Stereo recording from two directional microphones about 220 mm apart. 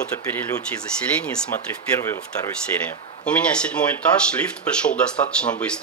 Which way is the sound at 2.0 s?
10° left (ahead or behind).